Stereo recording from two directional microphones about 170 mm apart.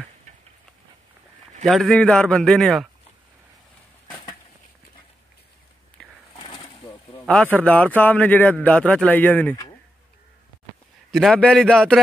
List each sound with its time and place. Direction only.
1.6 s a man's voice: centre (ahead or behind)
6.0 s sewing machine: 5° left (ahead or behind)
6.3 s pigeon: 30° left (ahead or behind)
7.2 s a man's voice: 5° left (ahead or behind)
11.1 s a man's voice: centre (ahead or behind)